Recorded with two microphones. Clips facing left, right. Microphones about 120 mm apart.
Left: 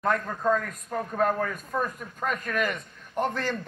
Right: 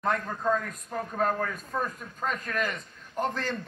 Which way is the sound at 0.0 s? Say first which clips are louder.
Left 2 dB; centre (ahead or behind).